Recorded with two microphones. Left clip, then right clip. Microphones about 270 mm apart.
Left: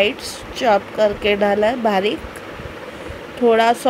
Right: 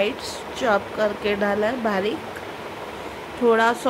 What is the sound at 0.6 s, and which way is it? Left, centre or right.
Speech, centre.